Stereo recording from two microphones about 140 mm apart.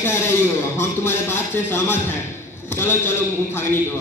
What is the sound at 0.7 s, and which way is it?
A man's voice, 15° left (ahead or behind).